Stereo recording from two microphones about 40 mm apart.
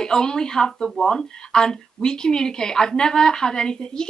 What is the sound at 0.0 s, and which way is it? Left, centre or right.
Speech, centre.